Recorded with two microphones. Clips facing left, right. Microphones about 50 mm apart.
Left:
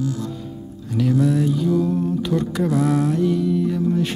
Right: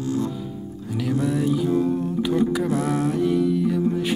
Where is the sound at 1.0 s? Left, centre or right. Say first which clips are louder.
Left 4 dB; centre.